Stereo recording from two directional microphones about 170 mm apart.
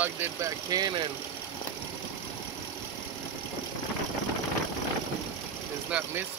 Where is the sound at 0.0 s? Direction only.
10° right (ahead or behind).